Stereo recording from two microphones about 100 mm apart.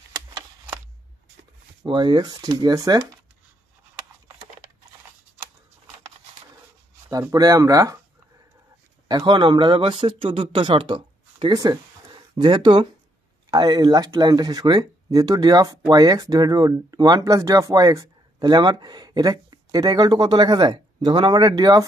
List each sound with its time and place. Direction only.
1.9 s speech: 50° right (ahead or behind)
7.1 s speech: 35° right (ahead or behind)
9.2 s speech: 50° right (ahead or behind)
11.5 s speech: 35° right (ahead or behind)
12.1 s speech: 50° right (ahead or behind)